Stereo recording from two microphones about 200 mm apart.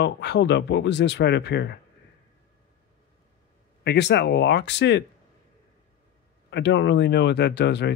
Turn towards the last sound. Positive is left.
turn(degrees=60)  # may be behind; listen again after turning